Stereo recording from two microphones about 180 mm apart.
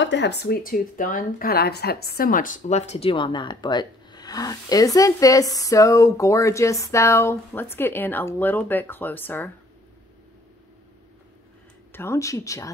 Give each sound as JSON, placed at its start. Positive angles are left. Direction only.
{"t": 0.0, "sound": "speech", "side_deg": 75}
{"t": 11.9, "sound": "speech", "side_deg": 15}